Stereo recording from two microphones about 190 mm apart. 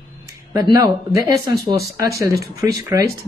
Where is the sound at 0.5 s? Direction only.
20° right (ahead or behind).